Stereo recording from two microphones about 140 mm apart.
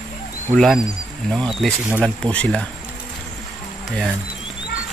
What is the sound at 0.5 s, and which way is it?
Speech, centre (ahead or behind).